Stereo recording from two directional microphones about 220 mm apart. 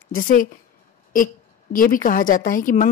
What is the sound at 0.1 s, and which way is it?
A woman's voice, 40° left (ahead or behind).